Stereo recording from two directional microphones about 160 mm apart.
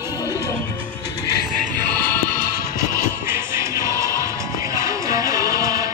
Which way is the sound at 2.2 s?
60° left (ahead or behind).